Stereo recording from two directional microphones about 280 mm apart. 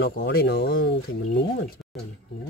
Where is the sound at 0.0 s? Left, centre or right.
Left.